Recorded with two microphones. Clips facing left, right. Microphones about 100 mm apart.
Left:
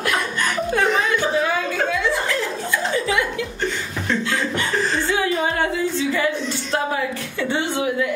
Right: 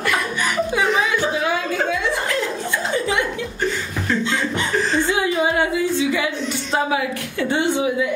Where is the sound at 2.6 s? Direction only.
25° right (ahead or behind).